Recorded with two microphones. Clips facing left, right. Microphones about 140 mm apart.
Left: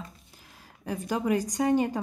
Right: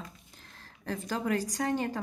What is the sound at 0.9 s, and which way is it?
A woman's voice, 15° left (ahead or behind).